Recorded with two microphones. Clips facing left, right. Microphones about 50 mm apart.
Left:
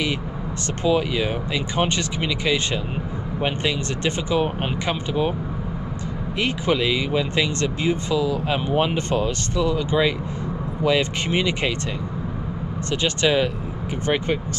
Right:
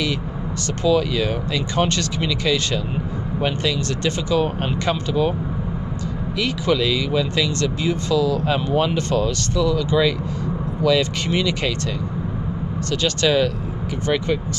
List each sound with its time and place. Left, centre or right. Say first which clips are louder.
0.8 s speech: right 2 dB; left
6.3 s speech: right 1 dB; left
8.1 s speech: right 3 dB; centre
12.9 s speech: right 1 dB; left
14.0 s speech: right 1 dB; left